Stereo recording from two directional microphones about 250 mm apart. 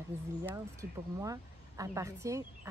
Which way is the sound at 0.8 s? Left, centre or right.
Right.